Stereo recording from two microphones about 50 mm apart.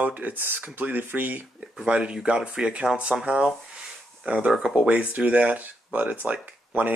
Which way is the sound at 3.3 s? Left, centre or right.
Right.